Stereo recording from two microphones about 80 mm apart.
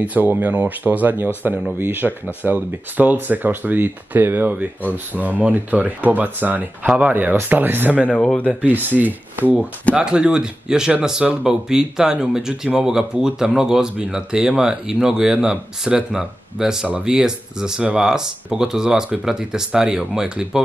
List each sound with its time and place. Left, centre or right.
0.0 s speech: right
8.1 s speech: centre
8.5 s speech: right